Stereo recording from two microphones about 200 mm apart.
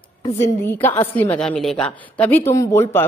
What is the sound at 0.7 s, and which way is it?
A woman's voice, 10° left (ahead or behind).